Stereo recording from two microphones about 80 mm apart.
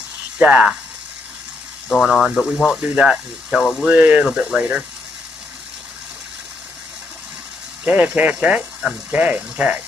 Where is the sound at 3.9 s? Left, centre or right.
Centre.